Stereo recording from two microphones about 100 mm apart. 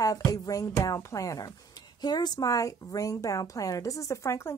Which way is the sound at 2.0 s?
45° left (ahead or behind).